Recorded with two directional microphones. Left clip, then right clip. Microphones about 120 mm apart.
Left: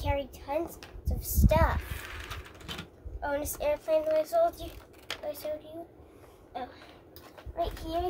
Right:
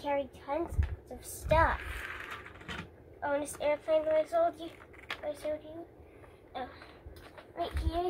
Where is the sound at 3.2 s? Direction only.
30° left (ahead or behind).